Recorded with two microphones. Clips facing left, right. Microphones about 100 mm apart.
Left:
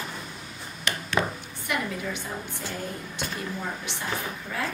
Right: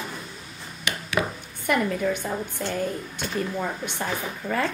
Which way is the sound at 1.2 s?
Centre (ahead or behind).